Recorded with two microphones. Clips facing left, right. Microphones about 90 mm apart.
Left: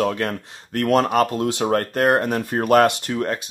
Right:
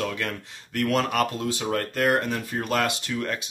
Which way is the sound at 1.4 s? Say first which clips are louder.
Left 6 dB; 50° left (ahead or behind).